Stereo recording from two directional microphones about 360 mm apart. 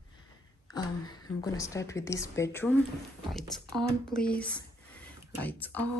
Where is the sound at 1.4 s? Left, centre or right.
Centre.